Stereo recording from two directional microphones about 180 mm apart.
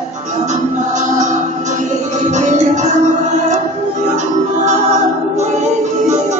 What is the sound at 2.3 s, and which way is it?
Music, 40° right (ahead or behind).